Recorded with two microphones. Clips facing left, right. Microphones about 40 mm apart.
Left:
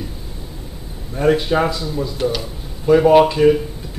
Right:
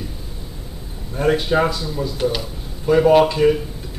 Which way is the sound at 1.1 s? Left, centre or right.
Centre.